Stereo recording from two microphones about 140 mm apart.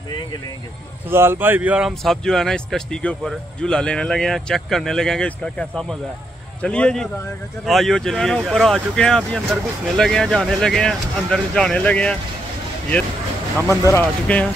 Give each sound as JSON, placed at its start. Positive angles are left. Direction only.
{"t": 1.0, "sound": "a man's voice", "side_deg": -15}
{"t": 13.7, "sound": "speech", "side_deg": 20}
{"t": 14.2, "sound": "a man's voice", "side_deg": 10}